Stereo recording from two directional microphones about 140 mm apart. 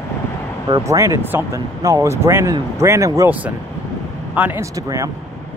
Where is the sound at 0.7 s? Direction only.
20° right (ahead or behind).